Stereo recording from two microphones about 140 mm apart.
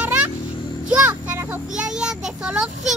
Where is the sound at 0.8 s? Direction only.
10° right (ahead or behind).